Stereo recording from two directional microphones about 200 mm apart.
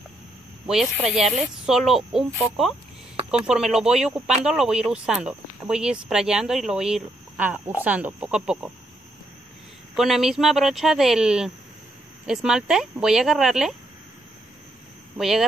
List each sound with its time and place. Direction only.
0.7 s speech: 5° right (ahead or behind)
9.9 s speech: centre (ahead or behind)
15.1 s speech: centre (ahead or behind)